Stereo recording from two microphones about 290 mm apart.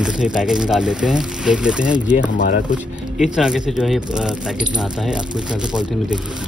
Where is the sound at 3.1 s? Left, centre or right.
Centre.